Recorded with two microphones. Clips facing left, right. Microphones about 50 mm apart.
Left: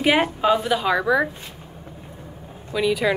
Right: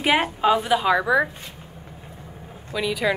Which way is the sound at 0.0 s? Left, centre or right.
Centre.